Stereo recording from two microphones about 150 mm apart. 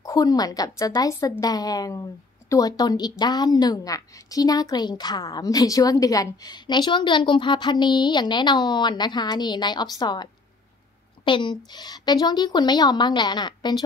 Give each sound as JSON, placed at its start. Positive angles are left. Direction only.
{"t": 0.0, "sound": "a woman's voice", "side_deg": 25}